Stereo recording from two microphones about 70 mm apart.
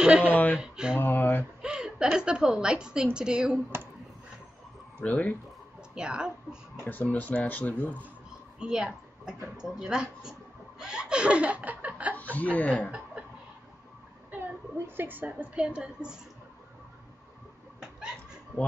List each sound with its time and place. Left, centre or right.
0.0 s speech: centre
0.3 s speech: left
0.6 s chuckle: centre
0.9 s speech: left
1.6 s a woman's voice: centre
3.7 s speech: right
5.0 s speech: left
5.9 s chuckle: centre
6.8 s speech: left
8.5 s a sound: centre
9.6 s chuckle: centre
12.2 s speech: left
15.0 s chuckle: right; by 16.2 s centre